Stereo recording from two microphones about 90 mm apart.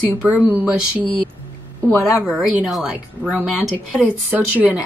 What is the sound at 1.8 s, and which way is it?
Speech, 20° left (ahead or behind).